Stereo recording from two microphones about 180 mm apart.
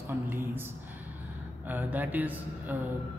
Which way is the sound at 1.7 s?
10° right (ahead or behind).